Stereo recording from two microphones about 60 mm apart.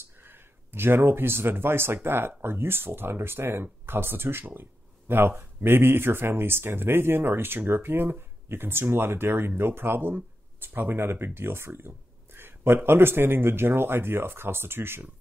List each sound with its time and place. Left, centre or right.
0.2 s speech: right